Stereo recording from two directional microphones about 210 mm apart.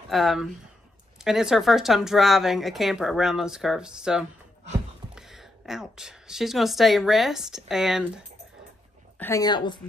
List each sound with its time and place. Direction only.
0.1 s speech: centre (ahead or behind)
9.2 s a woman's voice: 15° left (ahead or behind)